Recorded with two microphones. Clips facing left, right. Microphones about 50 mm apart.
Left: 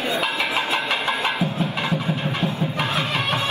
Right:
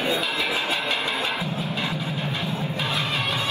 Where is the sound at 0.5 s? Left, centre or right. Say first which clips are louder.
Left 3 dB; left.